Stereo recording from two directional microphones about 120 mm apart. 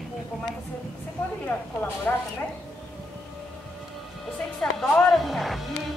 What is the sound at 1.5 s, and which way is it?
Speech, 20° left (ahead or behind).